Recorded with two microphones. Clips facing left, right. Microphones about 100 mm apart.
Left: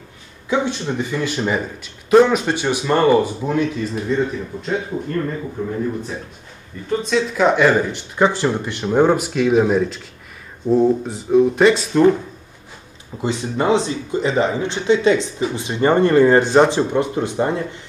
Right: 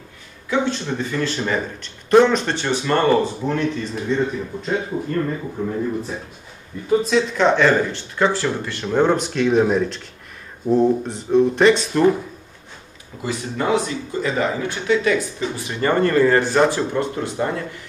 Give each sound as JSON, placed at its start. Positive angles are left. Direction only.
{"t": 0.5, "sound": "speech", "side_deg": 15}
{"t": 6.9, "sound": "speech", "side_deg": 0}
{"t": 13.2, "sound": "speech", "side_deg": 25}